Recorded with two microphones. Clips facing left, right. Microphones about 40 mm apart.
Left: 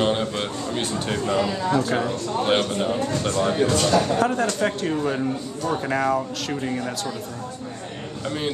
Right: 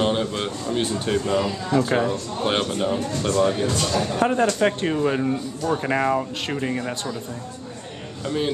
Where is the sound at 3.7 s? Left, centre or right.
Left.